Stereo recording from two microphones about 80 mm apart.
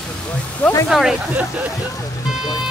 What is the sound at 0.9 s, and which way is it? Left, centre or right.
Speech, centre.